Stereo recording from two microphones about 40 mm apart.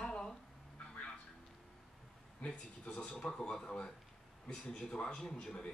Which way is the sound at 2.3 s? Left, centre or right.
Left.